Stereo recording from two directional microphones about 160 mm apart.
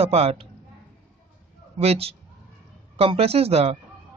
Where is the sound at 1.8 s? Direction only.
40° right (ahead or behind).